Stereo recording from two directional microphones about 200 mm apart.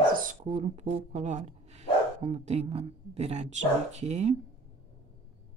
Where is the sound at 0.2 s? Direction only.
35° right (ahead or behind).